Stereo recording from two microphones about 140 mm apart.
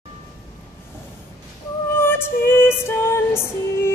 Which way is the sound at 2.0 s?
15° left (ahead or behind).